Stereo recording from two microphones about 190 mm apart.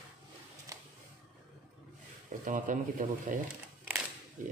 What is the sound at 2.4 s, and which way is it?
Speech, 45° right (ahead or behind).